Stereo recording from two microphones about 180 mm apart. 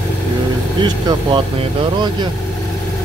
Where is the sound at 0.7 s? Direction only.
25° right (ahead or behind).